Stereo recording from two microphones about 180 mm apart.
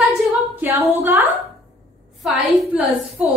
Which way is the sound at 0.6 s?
10° right (ahead or behind).